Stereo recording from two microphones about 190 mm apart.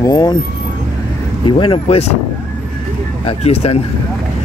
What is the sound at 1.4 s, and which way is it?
Speech, 25° left (ahead or behind).